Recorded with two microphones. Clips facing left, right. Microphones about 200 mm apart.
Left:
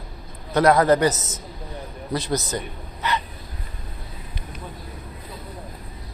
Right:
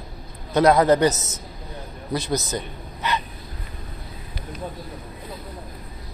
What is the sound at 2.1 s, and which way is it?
A man's voice, 20° right (ahead or behind).